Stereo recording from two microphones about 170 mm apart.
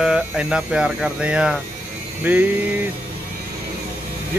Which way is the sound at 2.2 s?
10° right (ahead or behind).